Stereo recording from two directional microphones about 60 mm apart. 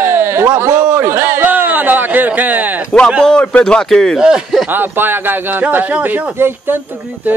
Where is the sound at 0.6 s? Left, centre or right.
Right.